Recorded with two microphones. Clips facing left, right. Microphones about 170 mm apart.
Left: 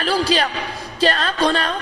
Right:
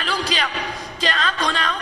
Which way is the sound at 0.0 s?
40° left (ahead or behind).